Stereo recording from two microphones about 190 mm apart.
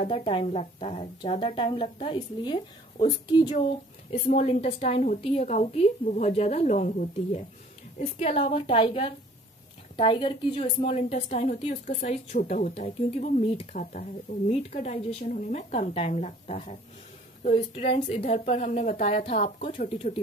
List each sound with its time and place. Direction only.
0.0 s a woman's voice: 30° left (ahead or behind)
4.1 s a woman's voice: 35° left (ahead or behind)